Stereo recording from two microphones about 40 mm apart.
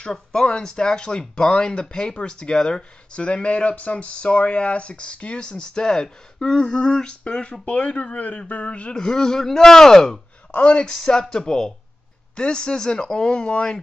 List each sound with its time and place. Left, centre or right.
0.0 s speech: centre
7.6 s speech: left
8.9 s speech: centre
10.5 s speech: left